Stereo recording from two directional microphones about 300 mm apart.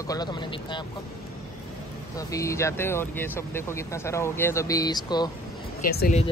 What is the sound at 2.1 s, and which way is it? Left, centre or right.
Speech, centre.